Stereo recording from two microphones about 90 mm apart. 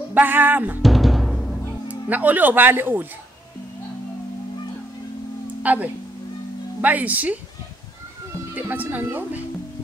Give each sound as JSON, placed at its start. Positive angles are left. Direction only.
{"t": 0.1, "sound": "speech", "side_deg": -20}
{"t": 0.8, "sound": "timpani", "side_deg": 0}
{"t": 1.9, "sound": "speech", "side_deg": -20}
{"t": 5.6, "sound": "speech", "side_deg": -15}
{"t": 8.5, "sound": "speech", "side_deg": -20}